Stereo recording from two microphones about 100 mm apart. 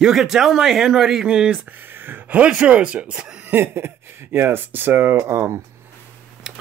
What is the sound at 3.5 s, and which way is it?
Speech, 25° right (ahead or behind).